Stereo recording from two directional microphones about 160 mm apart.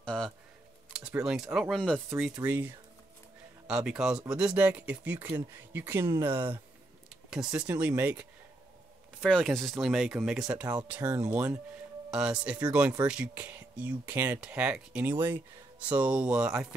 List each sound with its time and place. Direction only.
0.0 s a sound: 5° left (ahead or behind)
0.9 s speech: 5° right (ahead or behind)
9.2 s speech: 5° left (ahead or behind)
11.0 s speech: 25° right (ahead or behind)
11.3 s speech: 10° right (ahead or behind)